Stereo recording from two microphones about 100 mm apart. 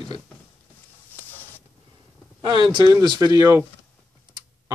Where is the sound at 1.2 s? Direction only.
20° left (ahead or behind).